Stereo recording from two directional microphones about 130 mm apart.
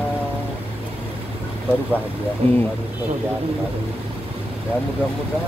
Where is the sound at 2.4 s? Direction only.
45° right (ahead or behind).